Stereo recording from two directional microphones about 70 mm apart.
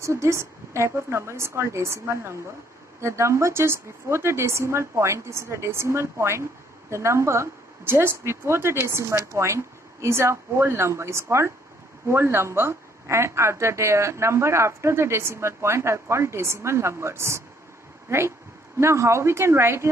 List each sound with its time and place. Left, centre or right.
0.0 s a woman's voice: right